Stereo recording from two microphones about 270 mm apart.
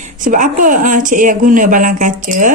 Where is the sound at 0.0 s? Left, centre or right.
Right.